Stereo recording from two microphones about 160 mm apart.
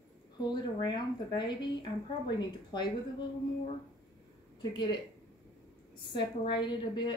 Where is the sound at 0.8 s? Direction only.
30° left (ahead or behind).